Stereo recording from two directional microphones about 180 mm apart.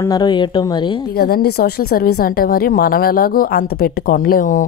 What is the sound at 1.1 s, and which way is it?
Speech, 60° left (ahead or behind).